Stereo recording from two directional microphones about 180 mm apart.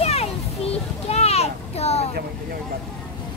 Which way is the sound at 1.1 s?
35° left (ahead or behind).